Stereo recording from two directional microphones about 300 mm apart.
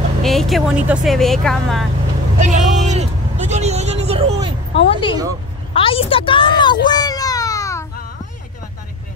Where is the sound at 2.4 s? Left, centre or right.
Right.